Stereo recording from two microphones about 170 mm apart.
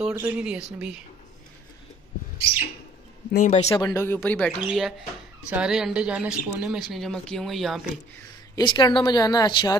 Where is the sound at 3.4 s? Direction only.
45° left (ahead or behind).